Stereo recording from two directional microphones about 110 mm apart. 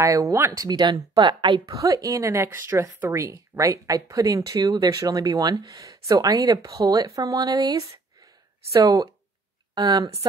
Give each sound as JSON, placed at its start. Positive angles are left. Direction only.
{"t": 0.0, "sound": "speech", "side_deg": -30}
{"t": 1.7, "sound": "speech", "side_deg": -30}